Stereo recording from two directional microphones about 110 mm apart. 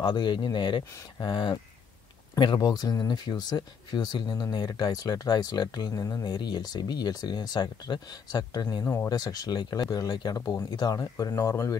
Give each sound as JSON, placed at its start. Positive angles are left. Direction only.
{"t": 0.0, "sound": "speech", "side_deg": 45}
{"t": 8.8, "sound": "speech", "side_deg": 20}
{"t": 9.1, "sound": "speech", "side_deg": 35}